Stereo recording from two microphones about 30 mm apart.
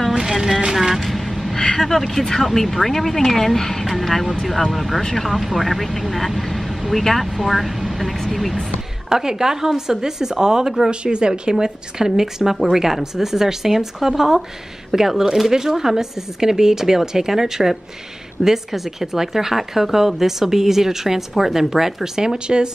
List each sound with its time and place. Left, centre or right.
0.2 s speech: centre
1.0 s vehicle: centre
1.8 s speech: centre
9.1 s speech: centre
10.9 s speech: right